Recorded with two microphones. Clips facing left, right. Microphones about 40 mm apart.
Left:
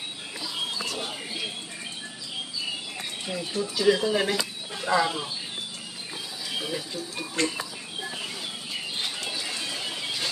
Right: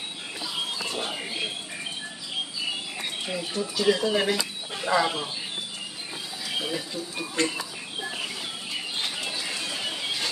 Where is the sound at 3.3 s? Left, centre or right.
Centre.